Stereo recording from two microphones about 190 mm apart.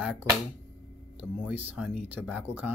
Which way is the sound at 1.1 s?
10° right (ahead or behind).